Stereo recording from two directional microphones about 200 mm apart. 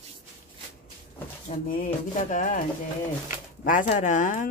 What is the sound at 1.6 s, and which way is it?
Speech, 40° left (ahead or behind).